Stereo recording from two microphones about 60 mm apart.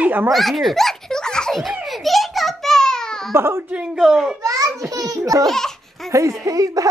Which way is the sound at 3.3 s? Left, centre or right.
Right.